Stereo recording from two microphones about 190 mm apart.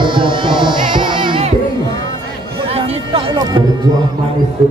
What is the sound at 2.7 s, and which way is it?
Music, 30° right (ahead or behind).